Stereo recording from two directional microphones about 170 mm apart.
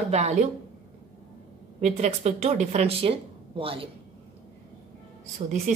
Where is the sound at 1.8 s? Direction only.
40° right (ahead or behind).